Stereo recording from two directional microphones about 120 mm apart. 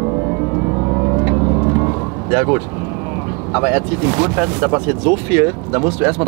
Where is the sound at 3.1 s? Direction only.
15° right (ahead or behind).